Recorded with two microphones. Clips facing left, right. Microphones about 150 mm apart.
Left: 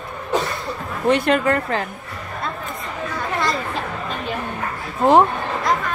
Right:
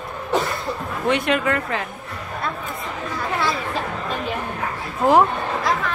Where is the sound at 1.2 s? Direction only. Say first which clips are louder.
Left 3 dB; 35° left (ahead or behind).